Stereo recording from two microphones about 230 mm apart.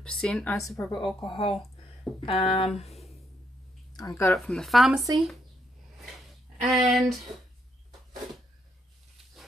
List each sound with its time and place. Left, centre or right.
0.0 s speech: centre; by 2.7 s left
3.9 s speech: centre
6.7 s speech: centre